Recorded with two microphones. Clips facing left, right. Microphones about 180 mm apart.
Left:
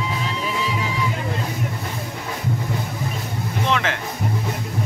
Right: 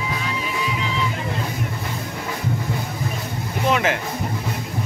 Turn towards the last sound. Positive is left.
turn(degrees=-10)  # may be behind; listen again after turning